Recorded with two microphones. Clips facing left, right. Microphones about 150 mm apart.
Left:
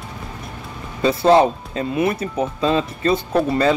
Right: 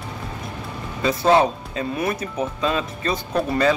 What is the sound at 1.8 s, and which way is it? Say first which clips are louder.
Speech: left 4 dB; 25° left (ahead or behind).